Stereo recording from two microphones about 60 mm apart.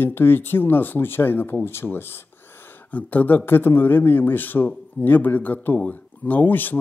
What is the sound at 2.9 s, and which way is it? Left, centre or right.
Speech, left.